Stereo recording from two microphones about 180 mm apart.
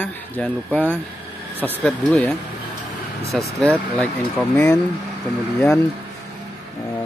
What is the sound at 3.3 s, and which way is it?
Speech, 5° left (ahead or behind).